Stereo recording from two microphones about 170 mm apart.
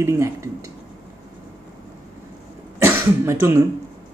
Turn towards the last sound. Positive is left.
turn(degrees=-15)  # may be behind; listen again after turning